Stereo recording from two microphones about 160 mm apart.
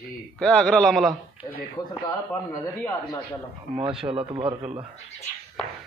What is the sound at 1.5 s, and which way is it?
Speech, 25° left (ahead or behind).